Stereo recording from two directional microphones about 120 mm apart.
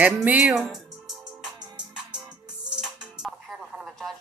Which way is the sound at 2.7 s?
5° right (ahead or behind).